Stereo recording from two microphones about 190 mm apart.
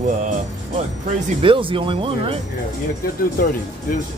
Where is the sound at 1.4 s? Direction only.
25° right (ahead or behind).